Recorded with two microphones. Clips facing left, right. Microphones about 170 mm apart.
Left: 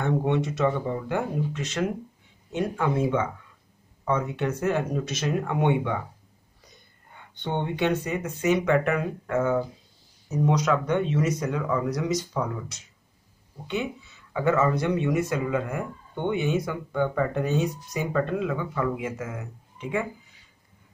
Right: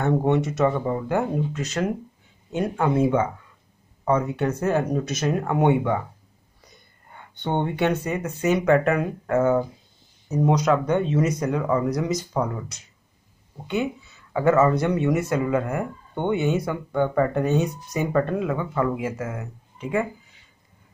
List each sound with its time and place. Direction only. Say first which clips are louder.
0.0 s speech: right 4 dB; 45° right (ahead or behind)
7.4 s speech: right 3 dB; 50° right (ahead or behind)
14.3 s speech: right 4 dB; 45° right (ahead or behind)